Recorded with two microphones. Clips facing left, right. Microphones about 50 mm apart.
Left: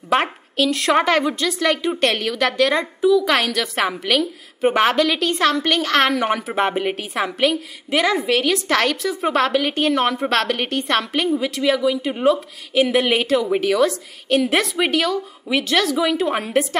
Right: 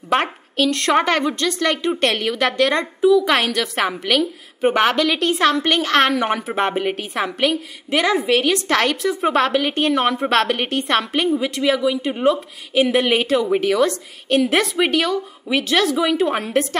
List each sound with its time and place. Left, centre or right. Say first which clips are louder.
0.1 s a woman's voice: even; centre